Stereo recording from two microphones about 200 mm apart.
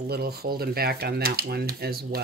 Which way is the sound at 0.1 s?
50° right (ahead or behind).